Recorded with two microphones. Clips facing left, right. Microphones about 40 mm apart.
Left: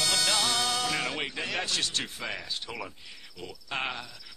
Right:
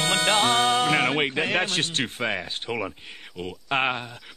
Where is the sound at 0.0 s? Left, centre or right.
Right.